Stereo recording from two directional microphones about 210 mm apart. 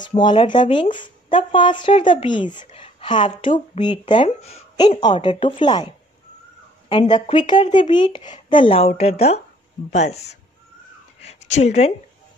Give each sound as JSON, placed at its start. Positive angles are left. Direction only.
{"t": 0.1, "sound": "a woman's voice", "side_deg": 25}